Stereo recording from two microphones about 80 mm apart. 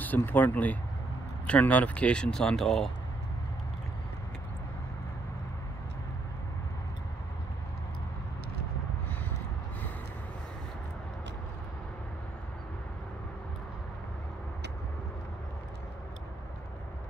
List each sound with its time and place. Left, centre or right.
0.0 s speech: left; by 2.9 s centre